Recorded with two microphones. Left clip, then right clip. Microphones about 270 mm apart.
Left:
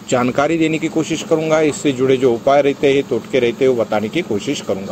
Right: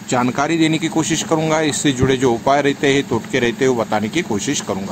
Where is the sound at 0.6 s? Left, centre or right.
Right.